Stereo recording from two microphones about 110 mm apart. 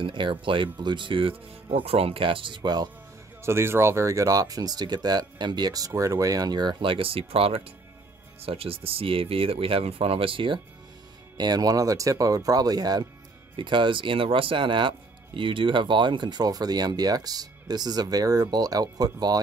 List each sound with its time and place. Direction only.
0.0 s speech: 50° right (ahead or behind)
3.4 s speech: 25° right (ahead or behind); by 10.6 s 50° right (ahead or behind)
11.3 s speech: 35° right (ahead or behind)
13.6 s speech: 50° right (ahead or behind)